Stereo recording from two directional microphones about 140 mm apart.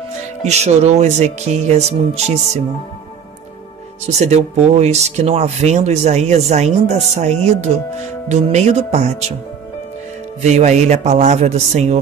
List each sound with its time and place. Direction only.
0.5 s speech: 50° right (ahead or behind)
4.2 s speech: 50° right (ahead or behind)
10.4 s a man's voice: 55° right (ahead or behind)